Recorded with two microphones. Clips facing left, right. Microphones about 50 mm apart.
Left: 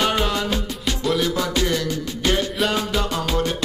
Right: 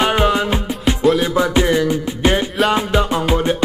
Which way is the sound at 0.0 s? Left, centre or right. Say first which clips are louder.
Right 6 dB; right.